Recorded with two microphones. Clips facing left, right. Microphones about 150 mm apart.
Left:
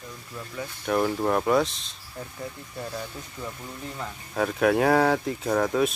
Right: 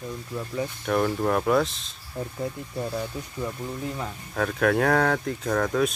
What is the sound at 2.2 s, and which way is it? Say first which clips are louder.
Speech: right 6 dB; 25° right (ahead or behind).